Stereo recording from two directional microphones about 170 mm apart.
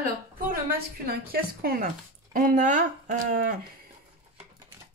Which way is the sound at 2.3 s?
50° right (ahead or behind).